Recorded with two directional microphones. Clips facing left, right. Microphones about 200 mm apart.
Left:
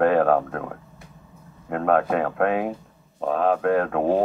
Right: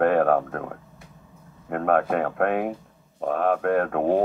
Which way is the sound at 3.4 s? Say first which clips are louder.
Left 1 dB; 55° right (ahead or behind).